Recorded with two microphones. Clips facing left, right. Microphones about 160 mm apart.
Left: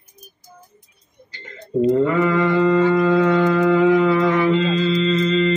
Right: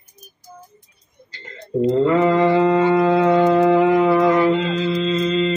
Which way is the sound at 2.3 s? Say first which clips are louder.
Right 1 dB; 30° right (ahead or behind).